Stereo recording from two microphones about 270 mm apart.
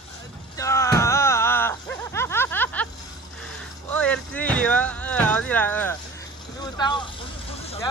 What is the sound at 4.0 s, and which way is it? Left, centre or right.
Speech, centre.